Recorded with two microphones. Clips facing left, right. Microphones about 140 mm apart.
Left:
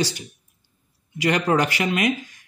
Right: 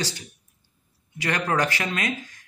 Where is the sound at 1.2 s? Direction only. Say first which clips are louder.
Left 4 dB; 15° left (ahead or behind).